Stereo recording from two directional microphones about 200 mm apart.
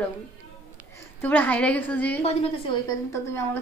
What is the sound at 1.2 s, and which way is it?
A woman's voice, 10° left (ahead or behind).